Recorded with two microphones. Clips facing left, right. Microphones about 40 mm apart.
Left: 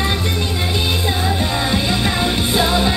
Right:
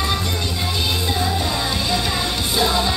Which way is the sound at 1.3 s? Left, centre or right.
Left.